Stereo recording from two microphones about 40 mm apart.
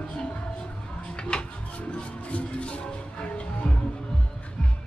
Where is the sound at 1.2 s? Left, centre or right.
Left.